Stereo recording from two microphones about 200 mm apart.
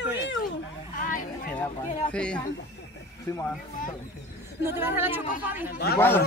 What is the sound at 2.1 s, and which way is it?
Speech, 5° left (ahead or behind).